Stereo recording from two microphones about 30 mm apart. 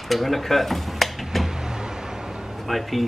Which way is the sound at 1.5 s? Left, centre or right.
Centre.